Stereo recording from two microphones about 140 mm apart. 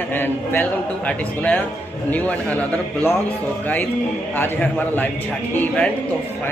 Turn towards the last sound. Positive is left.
turn(degrees=10)  # may be behind; listen again after turning